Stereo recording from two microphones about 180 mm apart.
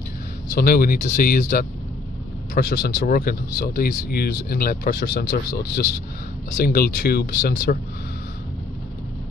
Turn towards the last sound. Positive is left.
turn(degrees=55)  # may be behind; listen again after turning